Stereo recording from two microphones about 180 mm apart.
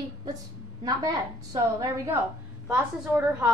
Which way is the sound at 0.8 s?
20° right (ahead or behind).